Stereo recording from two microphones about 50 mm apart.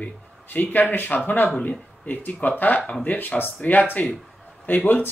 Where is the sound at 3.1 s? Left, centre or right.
Left.